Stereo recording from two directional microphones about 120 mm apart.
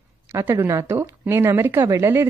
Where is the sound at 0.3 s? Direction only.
20° right (ahead or behind).